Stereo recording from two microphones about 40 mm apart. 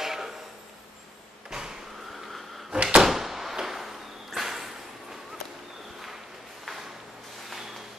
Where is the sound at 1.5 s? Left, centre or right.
Centre.